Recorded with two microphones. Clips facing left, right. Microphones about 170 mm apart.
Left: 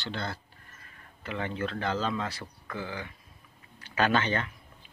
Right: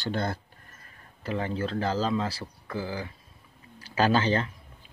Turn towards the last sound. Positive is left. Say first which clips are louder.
# right 3 dB
turn(degrees=-30)  # may be behind; listen again after turning